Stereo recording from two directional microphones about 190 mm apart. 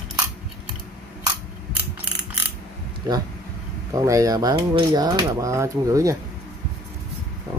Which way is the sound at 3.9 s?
15° right (ahead or behind).